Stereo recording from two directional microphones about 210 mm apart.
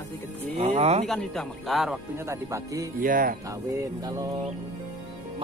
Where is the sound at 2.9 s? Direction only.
40° right (ahead or behind).